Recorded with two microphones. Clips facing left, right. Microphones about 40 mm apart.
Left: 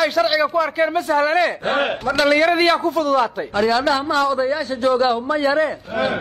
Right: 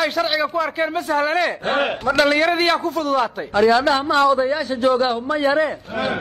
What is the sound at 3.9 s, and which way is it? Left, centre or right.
Speech, right.